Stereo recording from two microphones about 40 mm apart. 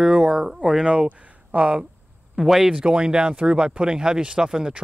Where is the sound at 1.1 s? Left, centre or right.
Right.